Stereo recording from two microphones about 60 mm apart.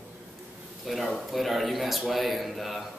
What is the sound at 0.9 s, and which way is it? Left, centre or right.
A man's voice, centre.